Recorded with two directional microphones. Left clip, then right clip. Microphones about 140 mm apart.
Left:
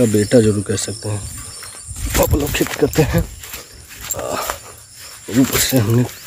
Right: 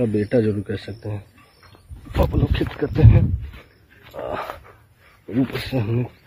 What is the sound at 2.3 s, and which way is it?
Speech, 35° left (ahead or behind).